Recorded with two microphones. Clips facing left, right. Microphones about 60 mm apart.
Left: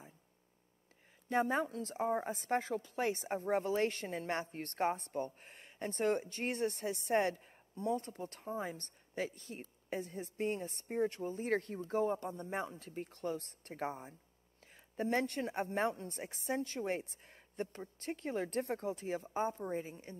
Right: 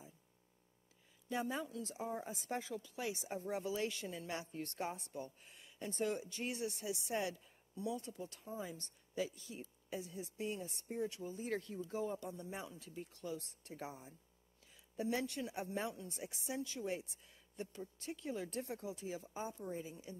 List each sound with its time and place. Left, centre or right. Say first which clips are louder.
1.3 s a woman's voice: left 7 dB; left